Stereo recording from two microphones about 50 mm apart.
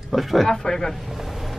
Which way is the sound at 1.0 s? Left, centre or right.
Centre.